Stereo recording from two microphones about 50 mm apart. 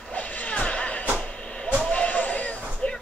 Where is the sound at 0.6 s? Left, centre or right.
Left.